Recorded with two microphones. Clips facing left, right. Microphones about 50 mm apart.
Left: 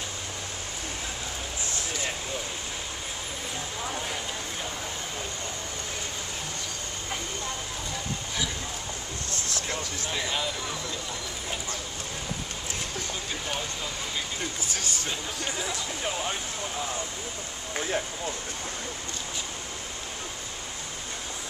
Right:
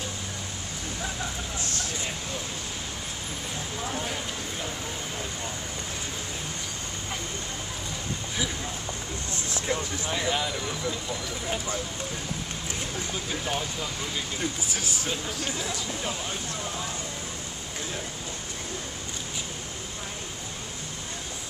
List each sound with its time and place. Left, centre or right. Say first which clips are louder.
9.3 s speech: right 4 dB; centre
10.1 s speech: right 3 dB; centre
14.7 s speech: even; centre
15.0 s speech: right 1 dB; centre